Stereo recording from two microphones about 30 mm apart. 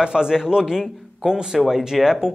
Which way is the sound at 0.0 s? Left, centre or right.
Right.